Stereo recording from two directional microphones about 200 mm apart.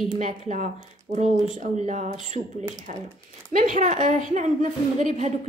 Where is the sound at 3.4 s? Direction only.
40° right (ahead or behind).